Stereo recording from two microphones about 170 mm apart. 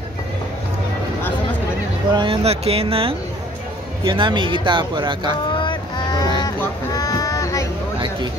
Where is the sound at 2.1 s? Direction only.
35° right (ahead or behind).